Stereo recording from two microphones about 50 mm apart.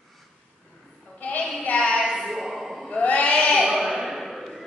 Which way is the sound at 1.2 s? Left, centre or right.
Left.